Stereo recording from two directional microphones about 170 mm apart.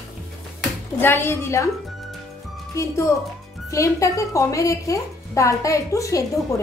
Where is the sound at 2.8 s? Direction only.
20° left (ahead or behind).